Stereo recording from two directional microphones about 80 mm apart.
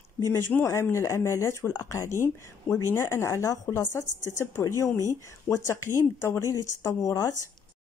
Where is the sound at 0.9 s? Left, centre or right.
Left.